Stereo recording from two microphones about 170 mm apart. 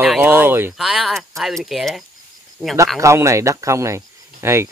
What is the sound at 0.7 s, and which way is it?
Speech, centre (ahead or behind).